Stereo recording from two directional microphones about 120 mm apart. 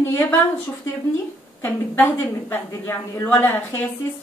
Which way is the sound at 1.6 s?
15° left (ahead or behind).